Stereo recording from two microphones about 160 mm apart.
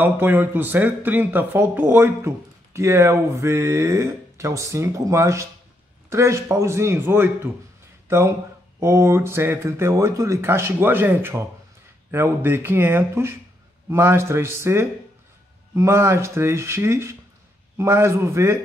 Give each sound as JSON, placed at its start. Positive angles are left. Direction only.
{"t": 0.0, "sound": "speech", "side_deg": -10}